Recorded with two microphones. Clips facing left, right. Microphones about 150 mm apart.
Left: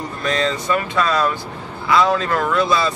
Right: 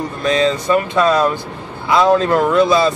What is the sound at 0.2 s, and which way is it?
Speech, 20° right (ahead or behind).